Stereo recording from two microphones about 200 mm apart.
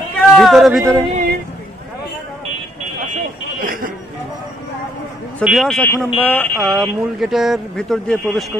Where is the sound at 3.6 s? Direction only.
45° right (ahead or behind).